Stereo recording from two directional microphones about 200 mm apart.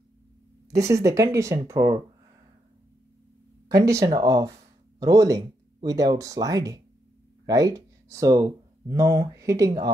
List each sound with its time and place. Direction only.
0.7 s speech: 15° right (ahead or behind)
3.6 s speech: 15° right (ahead or behind)